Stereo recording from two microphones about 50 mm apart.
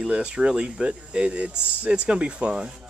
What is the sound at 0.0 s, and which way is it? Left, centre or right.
Speech, centre.